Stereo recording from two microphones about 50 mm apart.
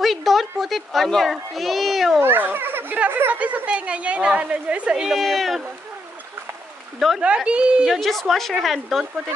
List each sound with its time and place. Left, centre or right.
0.0 s a child's voice: centre
2.2 s speech: right
3.3 s a woman's voice: right
5.1 s a woman's voice: centre
7.2 s a woman's voice: right
7.9 s a woman's voice: centre